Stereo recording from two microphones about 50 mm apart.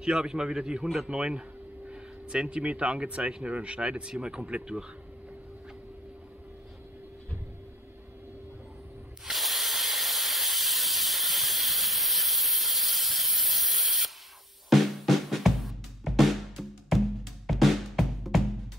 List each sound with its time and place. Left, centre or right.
0.0 s a man's voice: centre
9.2 s hiss: centre
14.7 s drum: centre
17.5 s music: centre